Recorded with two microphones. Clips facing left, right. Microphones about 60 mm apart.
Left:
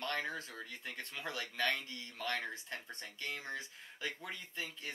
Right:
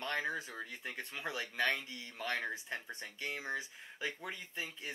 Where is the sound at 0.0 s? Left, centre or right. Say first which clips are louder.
Right 2 dB; centre.